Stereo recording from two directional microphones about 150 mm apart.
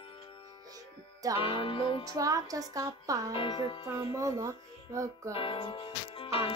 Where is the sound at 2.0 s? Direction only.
25° right (ahead or behind).